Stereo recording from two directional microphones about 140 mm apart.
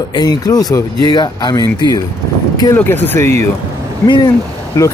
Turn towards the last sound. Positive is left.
turn(degrees=25)  # may be behind; listen again after turning